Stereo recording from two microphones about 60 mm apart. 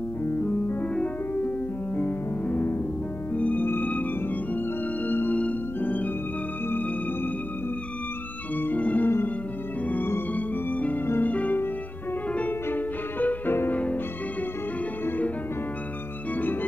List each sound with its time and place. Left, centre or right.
2.0 s music: left
8.5 s organ: left
10.3 s music: left
11.2 s violin: left
12.6 s music: left
15.0 s music: left